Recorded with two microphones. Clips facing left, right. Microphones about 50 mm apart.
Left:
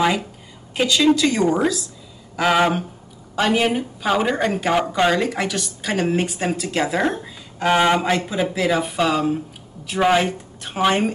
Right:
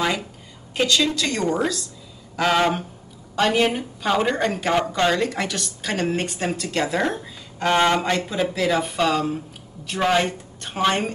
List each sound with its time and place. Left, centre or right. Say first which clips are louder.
0.7 s a woman's voice: left 4 dB; centre